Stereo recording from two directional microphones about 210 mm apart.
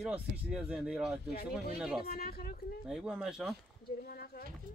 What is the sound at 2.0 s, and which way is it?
Speech, 45° left (ahead or behind).